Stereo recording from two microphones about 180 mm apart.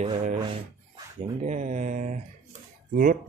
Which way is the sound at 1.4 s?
40° right (ahead or behind).